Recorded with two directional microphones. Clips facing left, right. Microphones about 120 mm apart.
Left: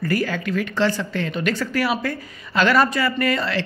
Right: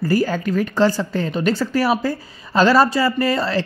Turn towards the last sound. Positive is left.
turn(degrees=-35)  # may be behind; listen again after turning